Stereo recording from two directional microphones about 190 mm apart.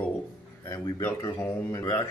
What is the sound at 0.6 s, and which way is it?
A man's voice, 20° left (ahead or behind).